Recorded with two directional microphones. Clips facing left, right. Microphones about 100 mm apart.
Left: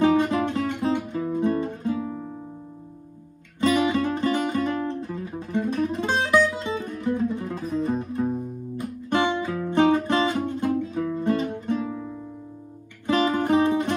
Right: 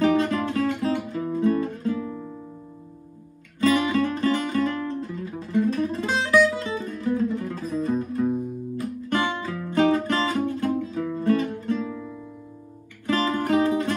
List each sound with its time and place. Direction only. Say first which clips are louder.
0.0 s music: left 1 dB; 15° left (ahead or behind)
3.6 s music: even; 20° left (ahead or behind)
13.0 s music: left 2 dB; 20° left (ahead or behind)